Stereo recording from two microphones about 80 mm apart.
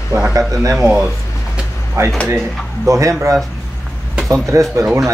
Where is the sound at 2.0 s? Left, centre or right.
Right.